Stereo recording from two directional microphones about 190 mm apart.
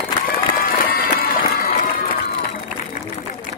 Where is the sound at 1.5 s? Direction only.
50° left (ahead or behind).